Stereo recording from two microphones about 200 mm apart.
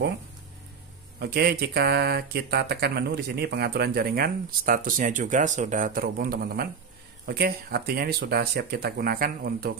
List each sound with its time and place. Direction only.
1.2 s speech: 50° right (ahead or behind)